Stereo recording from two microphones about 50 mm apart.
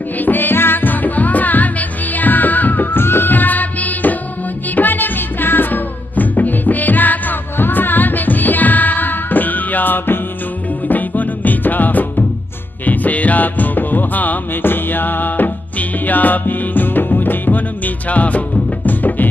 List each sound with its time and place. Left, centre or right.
0.2 s music: left